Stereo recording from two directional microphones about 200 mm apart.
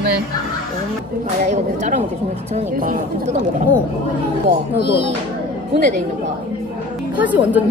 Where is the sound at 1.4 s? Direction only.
40° right (ahead or behind).